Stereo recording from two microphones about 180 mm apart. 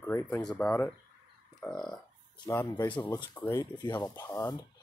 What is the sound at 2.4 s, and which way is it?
Speech, 20° left (ahead or behind).